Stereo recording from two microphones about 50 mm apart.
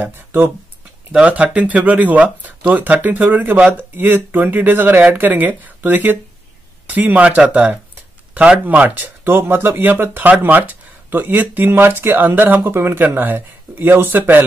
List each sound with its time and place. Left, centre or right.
0.0 s speech: right
1.1 s speech: right
9.2 s speech: right
12.7 s speech: right
13.2 s speech: right